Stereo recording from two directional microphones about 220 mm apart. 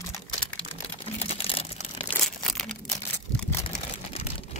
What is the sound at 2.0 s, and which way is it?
Crumpling, centre (ahead or behind).